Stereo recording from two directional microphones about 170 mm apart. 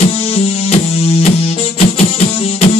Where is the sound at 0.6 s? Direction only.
40° left (ahead or behind).